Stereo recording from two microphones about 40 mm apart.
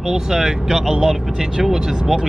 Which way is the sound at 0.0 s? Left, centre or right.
Centre.